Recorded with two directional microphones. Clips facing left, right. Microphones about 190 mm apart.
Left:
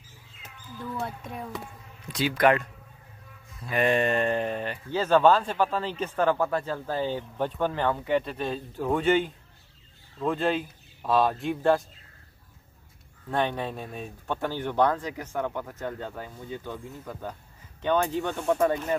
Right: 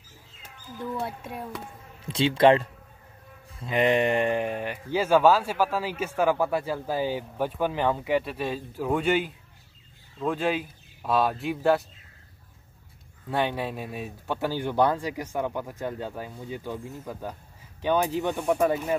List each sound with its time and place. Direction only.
0.9 s speech: 5° right (ahead or behind)
2.0 s speech: 25° right (ahead or behind); by 11.8 s centre (ahead or behind)
13.3 s speech: 5° right (ahead or behind)